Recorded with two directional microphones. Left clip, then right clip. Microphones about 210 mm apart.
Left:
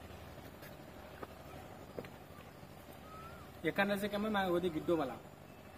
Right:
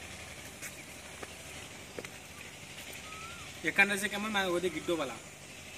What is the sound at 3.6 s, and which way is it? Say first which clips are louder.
Speech: right 7 dB; 45° left (ahead or behind).